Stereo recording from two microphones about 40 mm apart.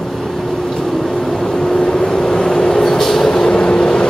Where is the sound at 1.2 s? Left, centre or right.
Centre.